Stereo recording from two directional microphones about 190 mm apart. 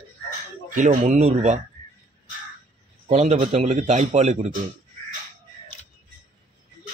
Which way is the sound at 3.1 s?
35° right (ahead or behind).